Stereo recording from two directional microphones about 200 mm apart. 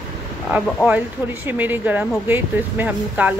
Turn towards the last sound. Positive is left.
turn(degrees=-10)  # may be behind; listen again after turning